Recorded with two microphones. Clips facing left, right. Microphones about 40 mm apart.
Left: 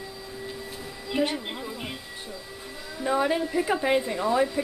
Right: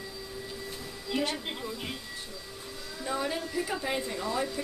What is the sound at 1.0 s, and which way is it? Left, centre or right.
Music, centre.